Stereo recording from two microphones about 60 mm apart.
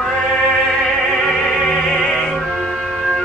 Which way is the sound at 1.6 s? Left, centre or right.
Centre.